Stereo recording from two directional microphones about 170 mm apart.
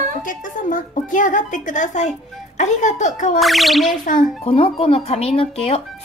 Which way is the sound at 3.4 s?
Centre (ahead or behind).